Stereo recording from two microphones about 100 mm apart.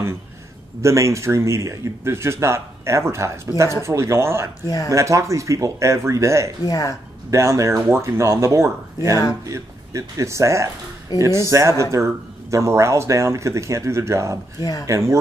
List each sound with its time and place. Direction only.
0.8 s speech: 30° right (ahead or behind)
4.6 s speech: 35° left (ahead or behind)
4.9 s speech: 30° right (ahead or behind)
6.6 s speech: 35° left (ahead or behind)
7.2 s speech: 30° right (ahead or behind)
14.6 s speech: 40° left (ahead or behind)
14.9 s speech: 30° right (ahead or behind)